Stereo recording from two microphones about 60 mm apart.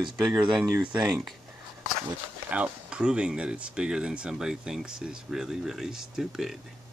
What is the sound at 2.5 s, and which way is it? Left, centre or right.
Speech, right.